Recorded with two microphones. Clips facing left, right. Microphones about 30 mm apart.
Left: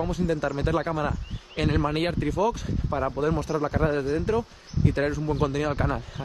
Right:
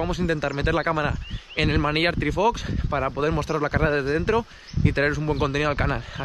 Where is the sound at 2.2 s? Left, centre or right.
Right.